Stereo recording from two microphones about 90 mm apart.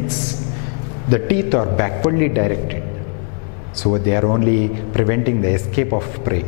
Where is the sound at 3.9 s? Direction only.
15° left (ahead or behind).